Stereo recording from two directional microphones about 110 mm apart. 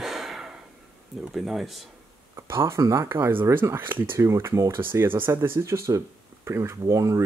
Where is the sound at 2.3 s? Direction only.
25° right (ahead or behind).